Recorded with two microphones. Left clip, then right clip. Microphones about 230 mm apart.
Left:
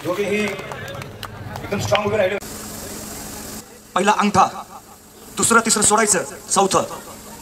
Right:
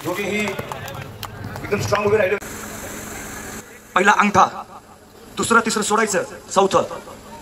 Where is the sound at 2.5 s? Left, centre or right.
Left.